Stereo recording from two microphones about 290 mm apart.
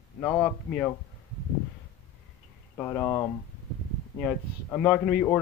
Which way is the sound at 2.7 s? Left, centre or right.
Centre.